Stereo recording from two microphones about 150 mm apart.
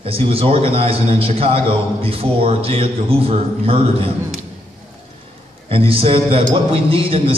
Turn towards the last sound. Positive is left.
turn(degrees=-35)  # may be behind; listen again after turning